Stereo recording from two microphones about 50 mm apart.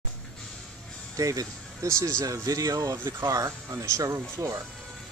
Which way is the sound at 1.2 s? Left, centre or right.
Right.